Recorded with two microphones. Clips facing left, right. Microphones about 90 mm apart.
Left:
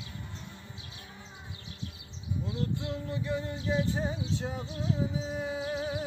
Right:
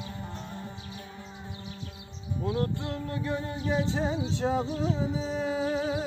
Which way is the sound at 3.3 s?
75° right (ahead or behind).